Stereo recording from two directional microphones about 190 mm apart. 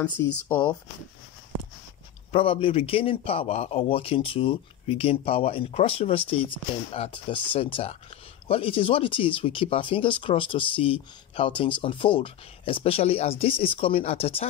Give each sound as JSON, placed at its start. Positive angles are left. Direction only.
{"t": 0.5, "sound": "speech", "side_deg": 10}
{"t": 2.3, "sound": "speech", "side_deg": 30}